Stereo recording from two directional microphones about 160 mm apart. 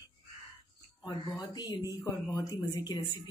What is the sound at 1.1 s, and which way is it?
Speech, 25° left (ahead or behind).